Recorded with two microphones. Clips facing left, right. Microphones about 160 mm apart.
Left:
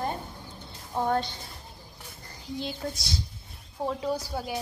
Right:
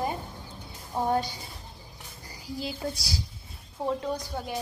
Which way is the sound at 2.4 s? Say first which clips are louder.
Even; 5° right (ahead or behind).